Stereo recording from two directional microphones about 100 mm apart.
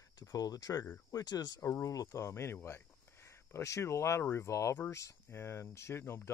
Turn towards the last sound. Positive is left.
turn(degrees=25)  # may be behind; listen again after turning